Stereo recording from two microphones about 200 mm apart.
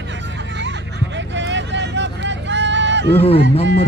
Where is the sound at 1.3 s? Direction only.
65° right (ahead or behind).